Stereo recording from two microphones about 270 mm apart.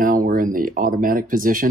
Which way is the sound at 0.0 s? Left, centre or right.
Right.